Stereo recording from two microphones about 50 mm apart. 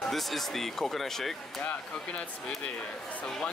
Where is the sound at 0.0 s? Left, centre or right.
Centre.